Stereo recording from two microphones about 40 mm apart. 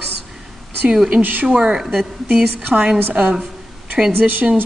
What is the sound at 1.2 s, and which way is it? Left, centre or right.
Speech, right.